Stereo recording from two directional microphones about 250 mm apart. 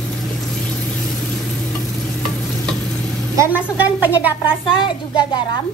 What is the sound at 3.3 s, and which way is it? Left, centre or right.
A woman's voice, centre.